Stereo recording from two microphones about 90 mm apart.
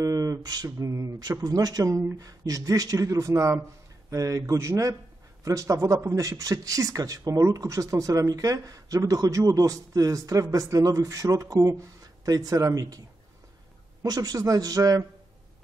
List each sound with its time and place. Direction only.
0.0 s speech: 40° right (ahead or behind)
14.0 s a man's voice: 45° right (ahead or behind)